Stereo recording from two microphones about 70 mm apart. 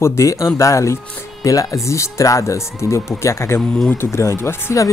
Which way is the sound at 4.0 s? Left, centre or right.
Left.